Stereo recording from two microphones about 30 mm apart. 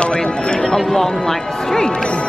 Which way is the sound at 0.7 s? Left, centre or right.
Centre.